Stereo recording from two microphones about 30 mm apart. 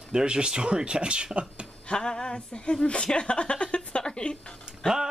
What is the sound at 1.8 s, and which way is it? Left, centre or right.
Speech, left.